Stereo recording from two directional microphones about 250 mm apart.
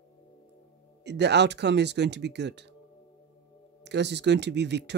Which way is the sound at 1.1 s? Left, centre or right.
Right.